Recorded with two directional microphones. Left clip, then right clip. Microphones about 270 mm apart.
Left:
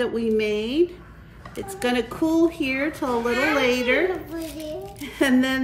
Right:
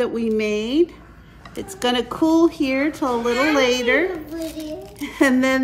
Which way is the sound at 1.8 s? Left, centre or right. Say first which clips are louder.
Right 4 dB; right.